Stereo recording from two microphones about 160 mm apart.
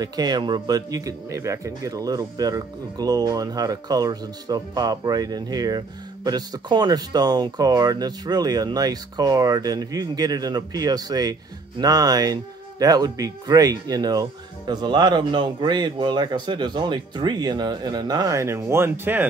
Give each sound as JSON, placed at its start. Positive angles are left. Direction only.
{"t": 0.0, "sound": "speech", "side_deg": -25}